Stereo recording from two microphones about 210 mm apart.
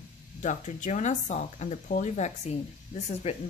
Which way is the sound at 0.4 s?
35° left (ahead or behind).